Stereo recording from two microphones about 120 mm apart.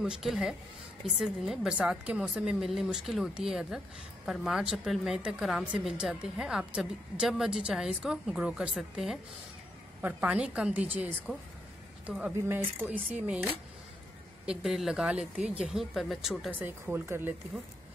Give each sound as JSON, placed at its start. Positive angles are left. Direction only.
{"t": 0.0, "sound": "a woman's voice", "side_deg": -5}
{"t": 14.4, "sound": "a woman's voice", "side_deg": -5}
{"t": 16.5, "sound": "speech", "side_deg": -20}